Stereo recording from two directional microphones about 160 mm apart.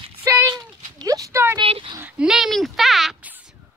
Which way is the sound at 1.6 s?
35° right (ahead or behind).